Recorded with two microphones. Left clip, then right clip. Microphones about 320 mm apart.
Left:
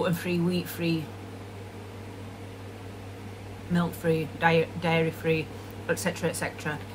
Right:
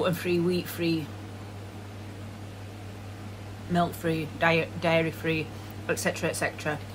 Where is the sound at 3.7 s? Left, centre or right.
Centre.